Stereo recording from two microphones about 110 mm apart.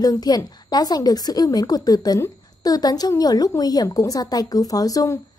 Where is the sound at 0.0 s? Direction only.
35° left (ahead or behind).